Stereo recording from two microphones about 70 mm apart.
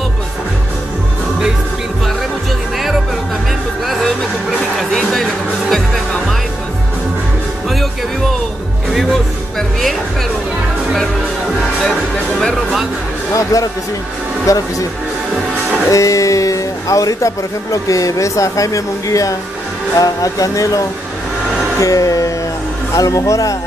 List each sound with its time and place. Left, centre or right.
3.8 s music: centre
9.6 s music: centre
12.4 s music: centre
13.3 s music: left
14.4 s speech: left
15.9 s speech: left
20.0 s music: left